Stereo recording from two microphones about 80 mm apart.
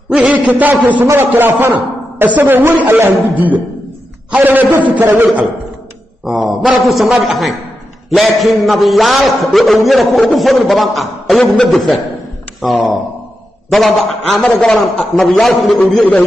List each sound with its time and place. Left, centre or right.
0.3 s a man's voice: centre
6.2 s a man's voice: centre
16.0 s a man's voice: centre